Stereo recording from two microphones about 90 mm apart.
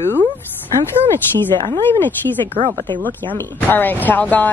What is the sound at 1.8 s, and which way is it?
Speech, 25° left (ahead or behind).